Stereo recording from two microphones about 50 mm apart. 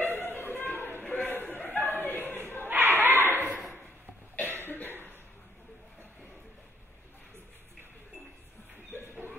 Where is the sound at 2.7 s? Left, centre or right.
Right.